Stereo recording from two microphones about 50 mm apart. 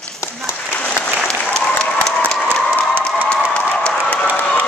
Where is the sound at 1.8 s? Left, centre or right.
Centre.